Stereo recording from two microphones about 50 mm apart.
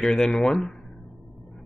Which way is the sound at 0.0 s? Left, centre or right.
Centre.